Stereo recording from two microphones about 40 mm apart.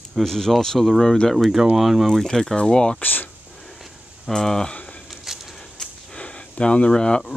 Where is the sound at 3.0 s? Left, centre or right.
Left.